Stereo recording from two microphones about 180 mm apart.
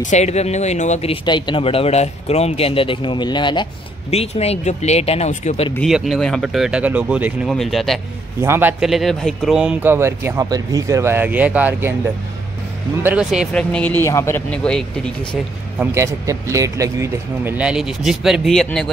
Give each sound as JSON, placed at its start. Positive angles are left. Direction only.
{"t": 0.0, "sound": "speech", "side_deg": 40}
{"t": 4.1, "sound": "speech", "side_deg": 35}
{"t": 5.8, "sound": "speech", "side_deg": 0}
{"t": 8.4, "sound": "speech", "side_deg": -15}
{"t": 13.0, "sound": "speech", "side_deg": -5}
{"t": 15.8, "sound": "speech", "side_deg": -15}